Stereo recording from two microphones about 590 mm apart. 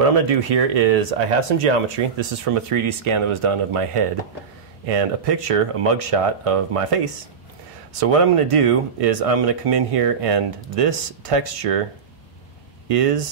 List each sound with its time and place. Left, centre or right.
0.0 s speech: right
2.1 s speech: right
12.8 s speech: right